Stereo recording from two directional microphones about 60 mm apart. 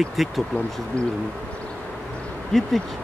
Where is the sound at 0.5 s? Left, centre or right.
Centre.